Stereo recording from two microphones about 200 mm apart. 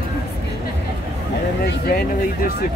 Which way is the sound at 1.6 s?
50° left (ahead or behind).